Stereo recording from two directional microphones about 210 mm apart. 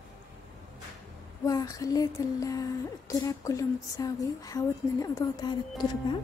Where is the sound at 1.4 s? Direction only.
15° left (ahead or behind).